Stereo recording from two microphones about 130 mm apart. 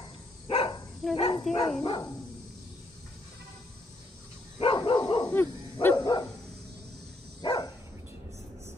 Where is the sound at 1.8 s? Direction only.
40° left (ahead or behind).